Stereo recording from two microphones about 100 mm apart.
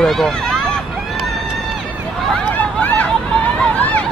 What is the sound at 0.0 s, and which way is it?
Speech, 5° left (ahead or behind).